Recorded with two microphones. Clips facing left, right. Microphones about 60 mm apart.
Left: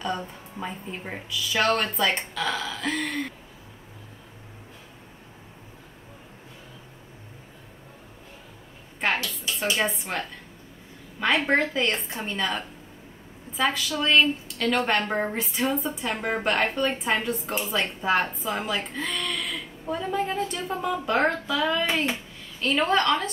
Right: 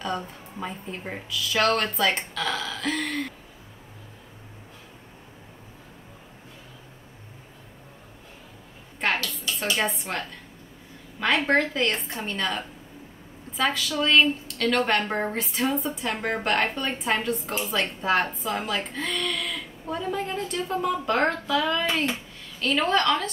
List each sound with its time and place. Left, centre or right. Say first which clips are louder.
0.0 s a woman's voice: even; centre
9.8 s a woman's voice: even; centre
21.8 s a woman's voice: even; centre